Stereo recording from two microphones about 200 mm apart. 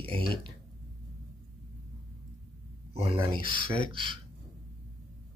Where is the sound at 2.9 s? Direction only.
30° right (ahead or behind).